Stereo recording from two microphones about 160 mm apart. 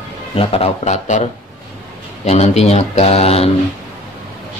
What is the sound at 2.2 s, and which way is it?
Speech, 40° left (ahead or behind).